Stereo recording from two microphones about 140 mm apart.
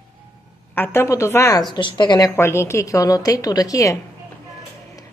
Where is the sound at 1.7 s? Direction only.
35° left (ahead or behind).